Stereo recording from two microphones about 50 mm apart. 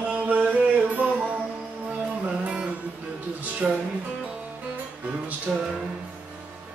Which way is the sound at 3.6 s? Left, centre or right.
Right.